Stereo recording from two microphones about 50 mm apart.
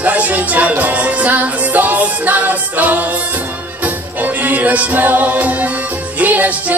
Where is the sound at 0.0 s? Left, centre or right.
Right.